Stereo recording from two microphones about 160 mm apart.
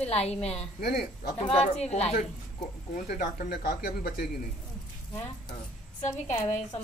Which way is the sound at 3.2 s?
70° left (ahead or behind).